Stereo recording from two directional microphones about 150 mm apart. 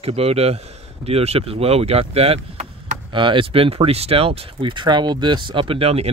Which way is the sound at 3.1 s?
35° right (ahead or behind).